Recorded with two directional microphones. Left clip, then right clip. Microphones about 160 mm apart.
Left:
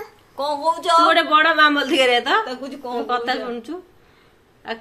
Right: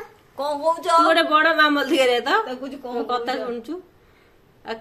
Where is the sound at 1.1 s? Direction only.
Centre (ahead or behind).